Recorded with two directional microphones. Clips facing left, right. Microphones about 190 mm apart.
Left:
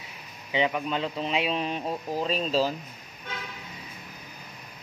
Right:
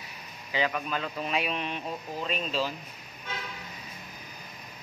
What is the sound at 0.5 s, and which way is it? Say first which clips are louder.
Speech: left 3 dB; 20° left (ahead or behind).